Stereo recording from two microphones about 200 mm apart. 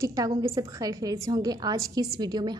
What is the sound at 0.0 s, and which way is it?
A woman's voice, 15° right (ahead or behind).